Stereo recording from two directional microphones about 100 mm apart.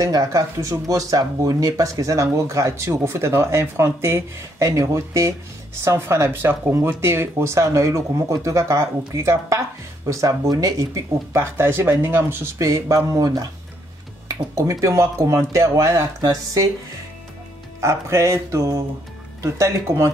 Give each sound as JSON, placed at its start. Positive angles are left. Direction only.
{"t": 0.0, "sound": "speech", "side_deg": -35}
{"t": 17.7, "sound": "speech", "side_deg": -30}